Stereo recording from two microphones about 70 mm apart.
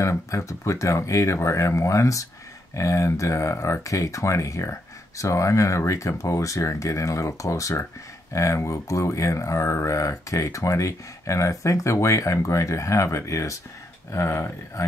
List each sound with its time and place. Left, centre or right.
0.0 s speech: left